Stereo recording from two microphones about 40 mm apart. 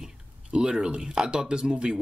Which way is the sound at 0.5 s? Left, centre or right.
Centre.